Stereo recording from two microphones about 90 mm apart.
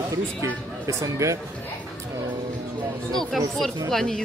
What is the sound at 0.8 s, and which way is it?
Speech, 35° right (ahead or behind).